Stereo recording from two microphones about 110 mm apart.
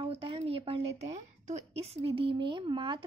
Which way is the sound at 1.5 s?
80° right.